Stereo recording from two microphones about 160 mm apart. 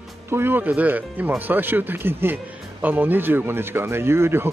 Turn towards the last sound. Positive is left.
turn(degrees=-15)  # may be behind; listen again after turning